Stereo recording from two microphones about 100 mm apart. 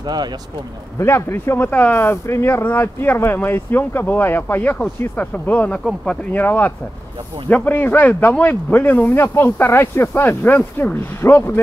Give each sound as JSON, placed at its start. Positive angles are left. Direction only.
{"t": 0.0, "sound": "speech", "side_deg": -45}
{"t": 0.9, "sound": "speech", "side_deg": 25}